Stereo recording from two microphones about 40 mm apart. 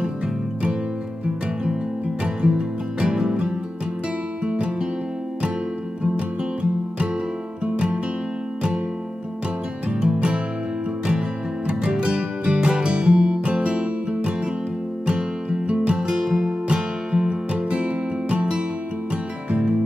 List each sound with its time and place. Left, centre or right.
2.2 s music: right
6.1 s music: right
9.9 s music: right
16.0 s music: centre